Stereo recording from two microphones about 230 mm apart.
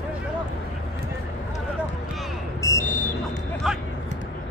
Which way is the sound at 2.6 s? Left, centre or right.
Centre.